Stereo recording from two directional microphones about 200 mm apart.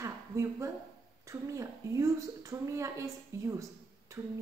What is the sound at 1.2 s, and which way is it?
A woman's voice, 15° right (ahead or behind).